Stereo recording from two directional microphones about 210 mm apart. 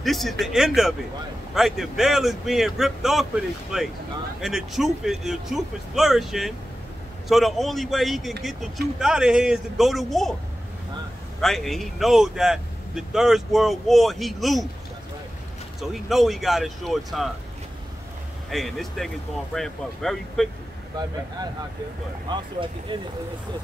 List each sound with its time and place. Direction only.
0.0 s speech: centre (ahead or behind)
11.4 s speech: centre (ahead or behind)
15.8 s speech: centre (ahead or behind)
18.5 s speech: centre (ahead or behind)
22.3 s speech: 20° right (ahead or behind)